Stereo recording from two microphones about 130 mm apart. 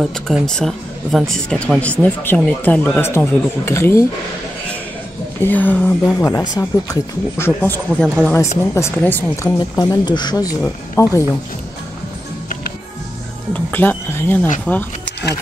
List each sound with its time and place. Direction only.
0.0 s speech: centre (ahead or behind); by 4.0 s 20° left (ahead or behind)
5.4 s speech: 15° left (ahead or behind)
6.0 s speech: 25° left (ahead or behind)
8.0 s speech: 5° left (ahead or behind)
9.6 s speech: 30° left (ahead or behind)
13.5 s speech: 15° left (ahead or behind)